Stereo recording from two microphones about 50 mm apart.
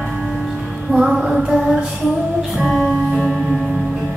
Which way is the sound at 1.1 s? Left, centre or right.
Centre.